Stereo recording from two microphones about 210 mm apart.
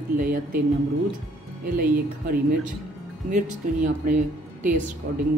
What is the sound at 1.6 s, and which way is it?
Speech, 40° right (ahead or behind).